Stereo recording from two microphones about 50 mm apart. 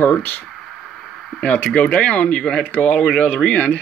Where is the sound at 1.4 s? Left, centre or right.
Left.